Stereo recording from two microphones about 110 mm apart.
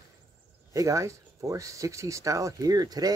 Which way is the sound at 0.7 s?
30° right (ahead or behind).